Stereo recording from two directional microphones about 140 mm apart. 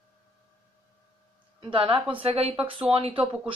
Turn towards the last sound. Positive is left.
turn(degrees=-40)  # may be behind; listen again after turning